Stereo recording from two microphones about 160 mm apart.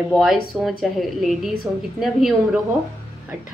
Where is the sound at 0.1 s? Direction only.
Centre (ahead or behind).